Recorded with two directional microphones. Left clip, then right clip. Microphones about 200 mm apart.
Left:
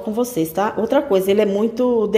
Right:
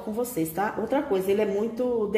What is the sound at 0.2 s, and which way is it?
Speech, 35° left (ahead or behind).